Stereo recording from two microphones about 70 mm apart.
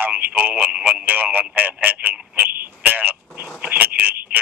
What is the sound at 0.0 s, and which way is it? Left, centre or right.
Telephone, right.